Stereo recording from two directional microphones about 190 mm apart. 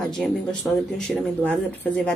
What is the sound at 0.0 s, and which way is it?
A woman's voice, centre (ahead or behind).